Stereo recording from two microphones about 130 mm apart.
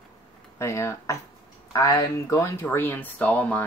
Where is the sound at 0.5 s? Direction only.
20° left (ahead or behind).